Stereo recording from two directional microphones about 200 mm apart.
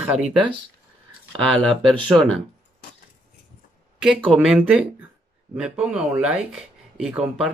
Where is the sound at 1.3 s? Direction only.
25° right (ahead or behind).